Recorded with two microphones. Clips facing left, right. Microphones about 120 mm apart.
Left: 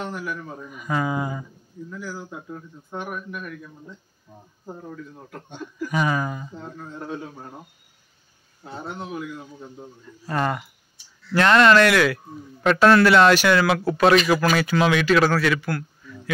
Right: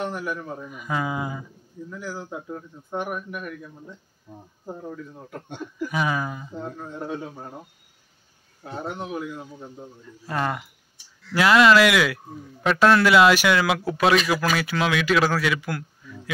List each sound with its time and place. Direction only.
0.0 s a man's voice: 15° right (ahead or behind)
4.6 s a man's voice: 15° right (ahead or behind)
8.8 s a man's voice: 15° right (ahead or behind)
10.2 s a man's voice: 5° right (ahead or behind)